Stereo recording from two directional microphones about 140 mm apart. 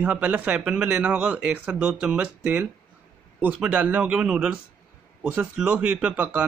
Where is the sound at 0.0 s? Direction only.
10° right (ahead or behind).